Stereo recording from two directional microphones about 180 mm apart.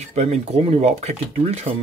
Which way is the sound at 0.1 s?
35° right (ahead or behind).